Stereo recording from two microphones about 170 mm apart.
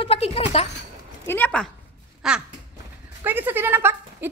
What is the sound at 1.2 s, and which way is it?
Speech, 10° left (ahead or behind).